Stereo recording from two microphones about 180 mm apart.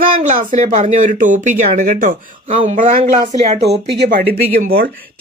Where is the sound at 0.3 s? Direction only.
40° right (ahead or behind).